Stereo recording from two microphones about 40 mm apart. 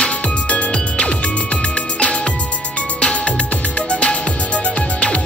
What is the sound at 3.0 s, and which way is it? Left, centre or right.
Music, left.